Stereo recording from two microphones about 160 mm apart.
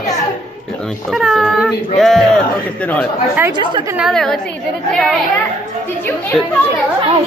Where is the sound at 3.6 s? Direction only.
30° right (ahead or behind).